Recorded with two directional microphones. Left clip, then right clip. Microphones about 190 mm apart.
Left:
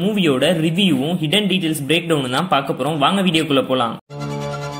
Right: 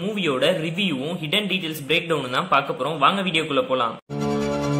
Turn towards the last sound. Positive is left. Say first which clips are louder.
# left 4 dB
turn(degrees=25)  # may be behind; listen again after turning